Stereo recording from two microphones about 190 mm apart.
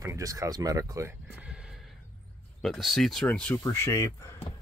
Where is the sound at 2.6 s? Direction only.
Centre (ahead or behind).